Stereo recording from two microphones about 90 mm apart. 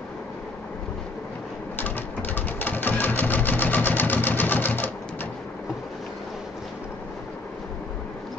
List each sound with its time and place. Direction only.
1.8 s sewing machine: 20° left (ahead or behind)